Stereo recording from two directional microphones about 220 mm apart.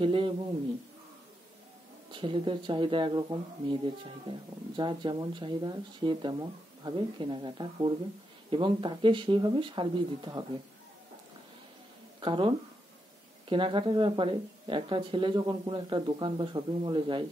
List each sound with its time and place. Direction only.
0.0 s speech: 25° right (ahead or behind)
2.1 s speech: 20° right (ahead or behind)
12.2 s speech: 20° right (ahead or behind)